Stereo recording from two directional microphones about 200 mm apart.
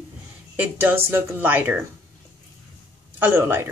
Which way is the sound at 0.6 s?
10° right (ahead or behind).